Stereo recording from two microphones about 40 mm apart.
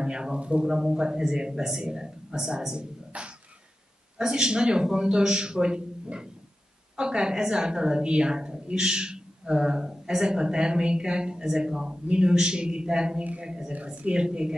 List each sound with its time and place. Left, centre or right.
0.0 s a woman's voice: right
3.1 s a sound: right
4.2 s a woman's voice: centre
7.0 s a woman's voice: centre